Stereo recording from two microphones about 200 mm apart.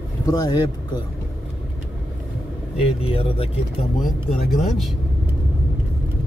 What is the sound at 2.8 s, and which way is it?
Speech, 30° left (ahead or behind).